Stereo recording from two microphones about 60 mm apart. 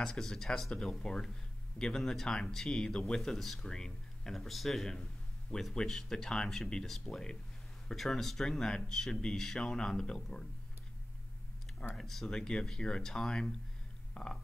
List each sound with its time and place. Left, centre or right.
0.0 s speech: centre
11.9 s speech: centre
14.1 s a sound: centre